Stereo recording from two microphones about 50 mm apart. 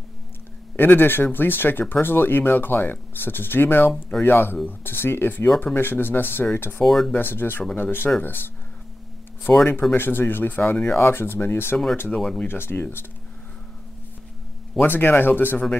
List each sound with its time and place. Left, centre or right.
0.7 s speech: left
6.8 s speech: centre
7.2 s speech: left
9.5 s speech: left
10.9 s speech: left
12.2 s speech: centre
12.4 s speech: left
14.9 s speech: left